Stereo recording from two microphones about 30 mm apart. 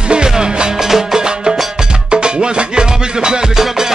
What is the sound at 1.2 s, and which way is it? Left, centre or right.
Music, right.